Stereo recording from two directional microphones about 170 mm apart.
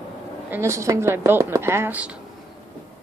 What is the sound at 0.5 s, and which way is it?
Speech, 15° right (ahead or behind).